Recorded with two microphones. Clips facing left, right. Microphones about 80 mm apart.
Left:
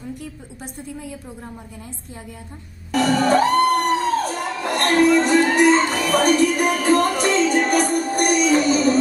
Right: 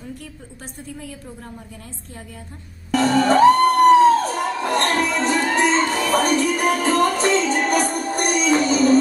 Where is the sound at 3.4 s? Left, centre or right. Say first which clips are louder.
Right 5 dB; right.